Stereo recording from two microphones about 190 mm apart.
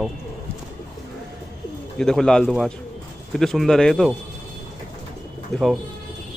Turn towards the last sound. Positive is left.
turn(degrees=0)  # may be behind; listen again after turning